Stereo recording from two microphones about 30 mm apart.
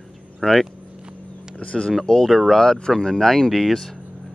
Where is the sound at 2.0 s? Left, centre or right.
Centre.